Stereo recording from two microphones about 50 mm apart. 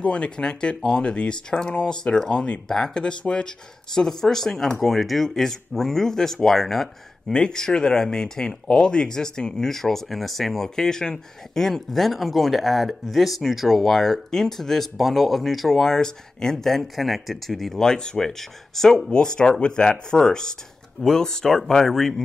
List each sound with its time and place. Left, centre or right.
0.0 s speech: left; by 7.3 s centre
7.3 s speech: centre